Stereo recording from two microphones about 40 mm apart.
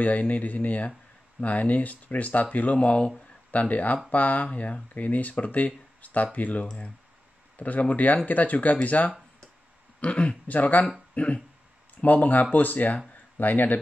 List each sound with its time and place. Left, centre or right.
0.0 s speech: left
4.5 s speech: left
5.9 s a sound: left
6.3 s speech: left
9.9 s speech: left
10.6 s speech: left
11.2 s speech: left